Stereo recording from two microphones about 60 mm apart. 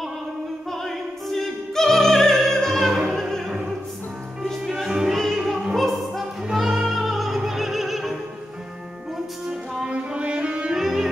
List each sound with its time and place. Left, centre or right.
0.7 s opera: centre
4.4 s music: centre
5.1 s opera: centre
5.4 s opera: centre
6.5 s music: centre
9.8 s music: centre
10.8 s music: centre